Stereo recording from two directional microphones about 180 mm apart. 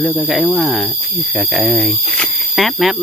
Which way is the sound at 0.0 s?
5° right (ahead or behind).